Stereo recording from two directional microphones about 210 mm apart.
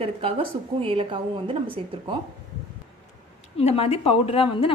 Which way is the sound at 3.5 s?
30° left (ahead or behind).